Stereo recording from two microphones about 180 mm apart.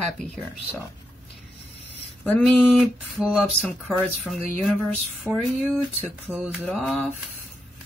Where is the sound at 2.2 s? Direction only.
5° left (ahead or behind).